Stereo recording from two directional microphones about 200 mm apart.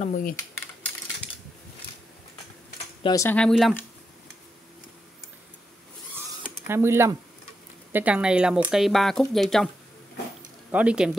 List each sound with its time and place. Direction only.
0.0 s speech: 45° left (ahead or behind)
3.0 s speech: 20° left (ahead or behind); by 3.8 s centre (ahead or behind)
6.7 s speech: 10° right (ahead or behind)
10.7 s speech: 5° right (ahead or behind)